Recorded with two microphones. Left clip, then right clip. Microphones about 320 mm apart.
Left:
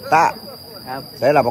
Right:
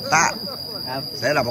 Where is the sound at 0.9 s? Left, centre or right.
Centre.